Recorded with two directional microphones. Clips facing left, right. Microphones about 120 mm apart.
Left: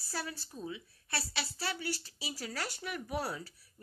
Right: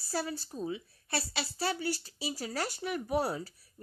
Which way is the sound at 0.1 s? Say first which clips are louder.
Right 6 dB; 30° right (ahead or behind).